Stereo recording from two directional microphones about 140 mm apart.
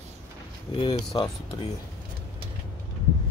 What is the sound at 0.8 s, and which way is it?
Speech, 35° left (ahead or behind).